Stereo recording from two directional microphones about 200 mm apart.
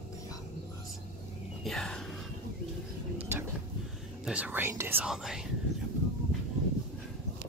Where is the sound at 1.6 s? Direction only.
Centre (ahead or behind).